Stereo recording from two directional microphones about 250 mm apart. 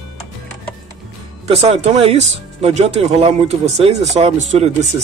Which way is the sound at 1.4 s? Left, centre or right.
Right.